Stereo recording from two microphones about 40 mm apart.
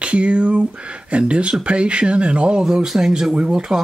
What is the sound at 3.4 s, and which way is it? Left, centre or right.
Speech, right.